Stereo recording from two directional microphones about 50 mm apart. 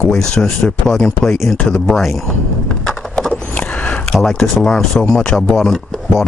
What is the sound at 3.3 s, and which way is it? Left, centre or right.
Vehicle, left.